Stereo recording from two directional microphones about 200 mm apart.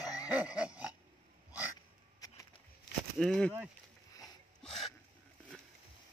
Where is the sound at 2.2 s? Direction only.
20° left (ahead or behind).